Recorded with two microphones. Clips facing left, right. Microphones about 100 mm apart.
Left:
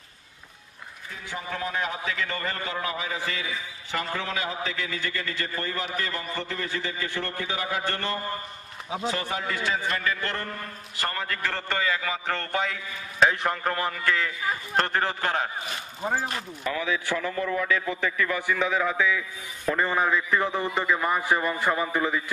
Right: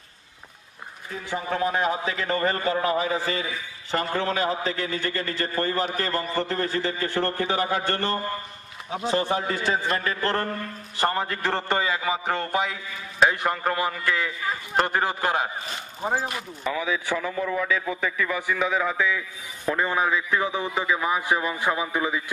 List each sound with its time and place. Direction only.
1.3 s a man's voice: 35° right (ahead or behind)
11.0 s a man's voice: 25° right (ahead or behind); by 22.2 s 5° right (ahead or behind)